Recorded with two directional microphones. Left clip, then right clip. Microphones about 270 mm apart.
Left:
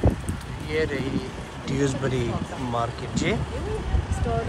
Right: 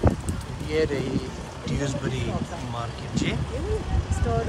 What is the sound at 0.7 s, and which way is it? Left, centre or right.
Speech, centre.